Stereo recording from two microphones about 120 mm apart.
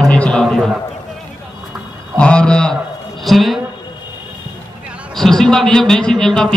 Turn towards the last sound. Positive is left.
turn(degrees=5)  # may be behind; listen again after turning